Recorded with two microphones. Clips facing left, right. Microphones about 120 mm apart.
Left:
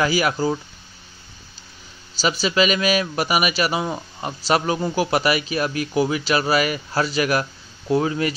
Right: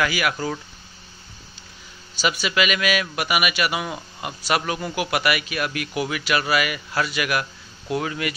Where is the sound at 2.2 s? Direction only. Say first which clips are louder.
Left 3 dB; 30° left (ahead or behind).